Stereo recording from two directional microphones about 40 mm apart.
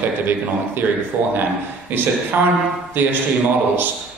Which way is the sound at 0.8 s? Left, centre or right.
Right.